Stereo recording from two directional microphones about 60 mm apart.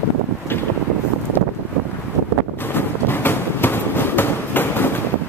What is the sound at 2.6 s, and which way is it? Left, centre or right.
Train, left.